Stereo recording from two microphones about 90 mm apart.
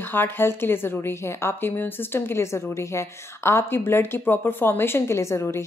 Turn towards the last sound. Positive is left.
turn(degrees=30)  # may be behind; listen again after turning